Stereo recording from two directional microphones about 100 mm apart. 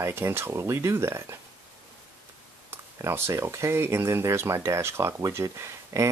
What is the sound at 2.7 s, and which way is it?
Speech, 25° right (ahead or behind).